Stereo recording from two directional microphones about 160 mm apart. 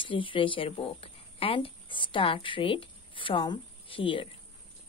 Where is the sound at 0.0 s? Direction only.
30° left (ahead or behind).